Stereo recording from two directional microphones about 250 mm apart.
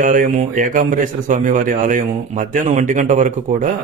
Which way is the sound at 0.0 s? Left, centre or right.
Right.